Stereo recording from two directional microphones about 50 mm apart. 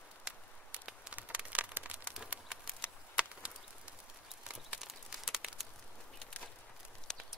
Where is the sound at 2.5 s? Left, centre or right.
Centre.